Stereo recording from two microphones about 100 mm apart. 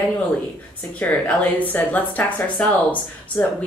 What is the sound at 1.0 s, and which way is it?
Speech, 15° left (ahead or behind).